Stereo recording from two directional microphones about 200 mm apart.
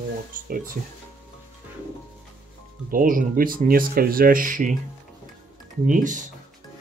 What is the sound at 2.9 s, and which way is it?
Speech, 45° right (ahead or behind).